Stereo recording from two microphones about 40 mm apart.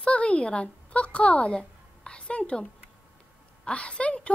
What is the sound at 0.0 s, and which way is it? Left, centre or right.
A woman's voice, left.